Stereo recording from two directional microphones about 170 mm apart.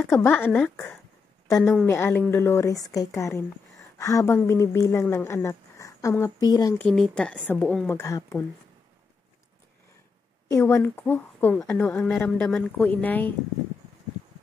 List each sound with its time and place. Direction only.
0.0 s a woman's voice: 10° left (ahead or behind)
6.8 s a woman's voice: 5° left (ahead or behind)
10.5 s a woman's voice: 15° left (ahead or behind)